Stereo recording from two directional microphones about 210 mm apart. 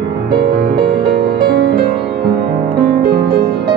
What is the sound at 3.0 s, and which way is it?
Music, 50° right (ahead or behind).